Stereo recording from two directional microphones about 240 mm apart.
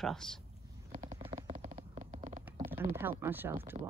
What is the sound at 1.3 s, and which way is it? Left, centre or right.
Stomach rumble, right.